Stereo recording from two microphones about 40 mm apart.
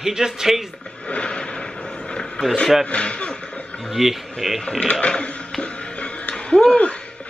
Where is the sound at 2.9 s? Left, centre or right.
Left.